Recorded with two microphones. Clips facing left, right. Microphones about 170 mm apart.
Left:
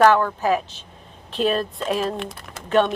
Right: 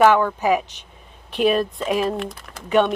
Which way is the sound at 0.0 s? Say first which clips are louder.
Right 1 dB; 10° right (ahead or behind).